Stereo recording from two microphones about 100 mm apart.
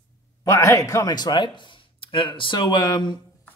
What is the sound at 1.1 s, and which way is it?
Speech, 45° left (ahead or behind).